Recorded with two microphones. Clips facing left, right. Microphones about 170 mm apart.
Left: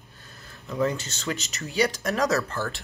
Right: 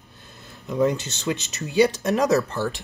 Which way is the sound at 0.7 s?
20° right (ahead or behind).